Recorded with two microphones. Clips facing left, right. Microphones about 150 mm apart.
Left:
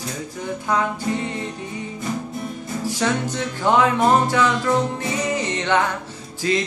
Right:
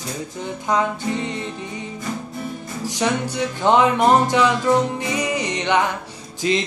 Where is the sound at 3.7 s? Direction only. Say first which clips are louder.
Right 1 dB; 20° right (ahead or behind).